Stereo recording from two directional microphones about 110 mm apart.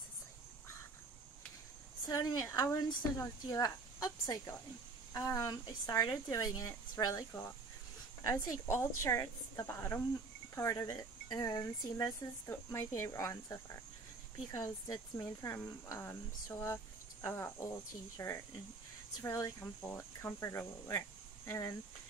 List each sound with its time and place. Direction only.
2.0 s a woman's voice: 35° left (ahead or behind)
8.3 s speech: 25° left (ahead or behind)